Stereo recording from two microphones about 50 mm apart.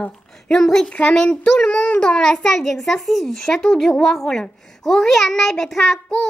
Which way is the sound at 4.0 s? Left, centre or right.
Centre.